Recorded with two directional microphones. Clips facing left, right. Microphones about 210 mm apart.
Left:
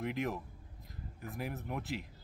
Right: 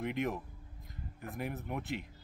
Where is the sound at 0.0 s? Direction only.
Centre (ahead or behind).